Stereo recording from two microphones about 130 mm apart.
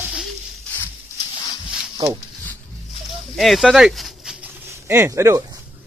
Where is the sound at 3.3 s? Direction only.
Centre (ahead or behind).